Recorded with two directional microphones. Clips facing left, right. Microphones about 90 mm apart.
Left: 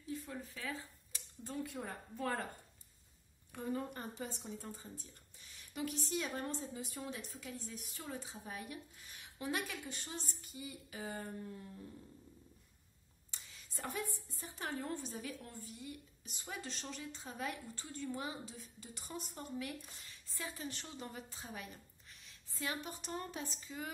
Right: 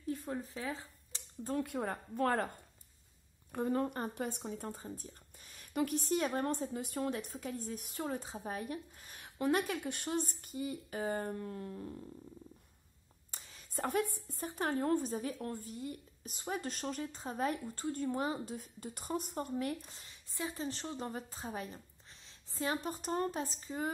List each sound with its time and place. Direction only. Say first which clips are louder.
0.0 s a sound: right 6 dB; 50° right (ahead or behind); by 1.2 s 30° right (ahead or behind)
1.4 s speech: right 7 dB; 55° right (ahead or behind)
3.5 s speech: right 7 dB; 50° right (ahead or behind)
11.3 s dog: right 6 dB; 70° right (ahead or behind)
13.3 s a woman's voice: right 3 dB; 45° right (ahead or behind)
19.9 s a sound: right 1 dB; 25° right (ahead or behind)
20.5 s speech: right 6 dB; 35° right (ahead or behind)